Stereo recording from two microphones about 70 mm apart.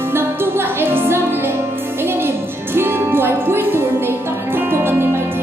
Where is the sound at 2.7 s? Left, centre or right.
Right.